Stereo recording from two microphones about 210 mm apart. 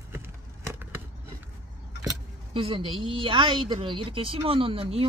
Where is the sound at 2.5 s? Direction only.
25° right (ahead or behind).